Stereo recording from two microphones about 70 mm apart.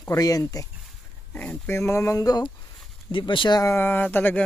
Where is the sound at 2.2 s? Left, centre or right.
Left.